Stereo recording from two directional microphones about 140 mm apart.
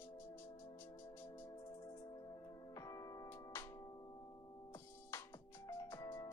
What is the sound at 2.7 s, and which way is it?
Music, 25° left (ahead or behind).